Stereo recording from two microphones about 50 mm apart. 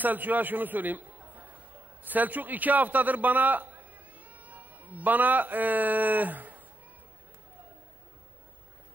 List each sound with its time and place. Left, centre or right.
0.0 s a man's voice: right